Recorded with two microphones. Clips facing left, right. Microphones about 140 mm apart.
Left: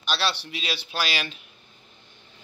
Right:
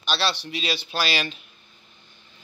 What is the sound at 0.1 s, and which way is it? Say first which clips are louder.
A man's voice: right 2 dB; 10° left (ahead or behind).